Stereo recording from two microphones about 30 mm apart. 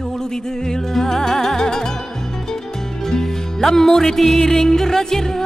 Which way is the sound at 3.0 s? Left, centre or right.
Centre.